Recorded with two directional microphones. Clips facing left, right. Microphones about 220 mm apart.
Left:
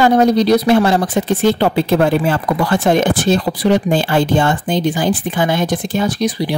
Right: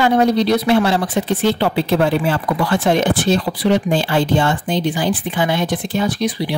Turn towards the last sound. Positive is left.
turn(degrees=40)  # may be behind; listen again after turning